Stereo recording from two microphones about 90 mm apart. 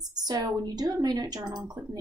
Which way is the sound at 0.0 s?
50° right (ahead or behind).